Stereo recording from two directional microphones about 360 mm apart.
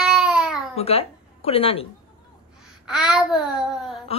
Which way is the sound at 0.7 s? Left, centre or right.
Centre.